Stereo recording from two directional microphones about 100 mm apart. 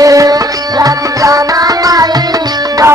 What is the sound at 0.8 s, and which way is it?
Tabla, 35° right (ahead or behind).